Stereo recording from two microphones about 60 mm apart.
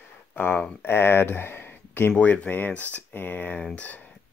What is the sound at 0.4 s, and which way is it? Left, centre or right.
Speech, left.